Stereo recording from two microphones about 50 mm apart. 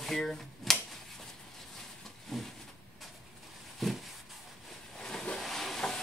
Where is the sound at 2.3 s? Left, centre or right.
Centre.